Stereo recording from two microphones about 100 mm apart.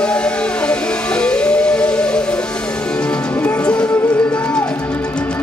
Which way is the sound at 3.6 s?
10° left (ahead or behind).